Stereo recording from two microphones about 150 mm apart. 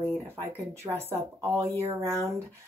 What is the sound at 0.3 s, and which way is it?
Speech, 15° right (ahead or behind).